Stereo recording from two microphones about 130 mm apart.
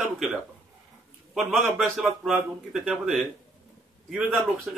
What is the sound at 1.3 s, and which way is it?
A man's voice, centre (ahead or behind).